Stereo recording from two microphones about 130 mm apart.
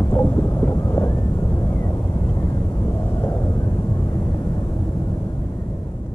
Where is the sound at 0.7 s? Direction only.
30° left (ahead or behind).